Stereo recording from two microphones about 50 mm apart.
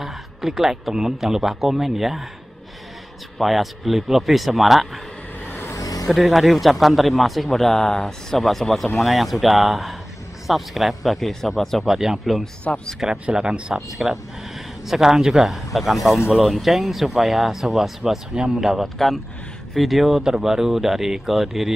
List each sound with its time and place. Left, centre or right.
0.0 s speech: centre
3.3 s a man's voice: centre
5.4 s vehicle: left
6.0 s a man's voice: centre
11.8 s speech: centre
12.7 s speech: left
13.2 s speech: centre
13.9 s a man's voice: centre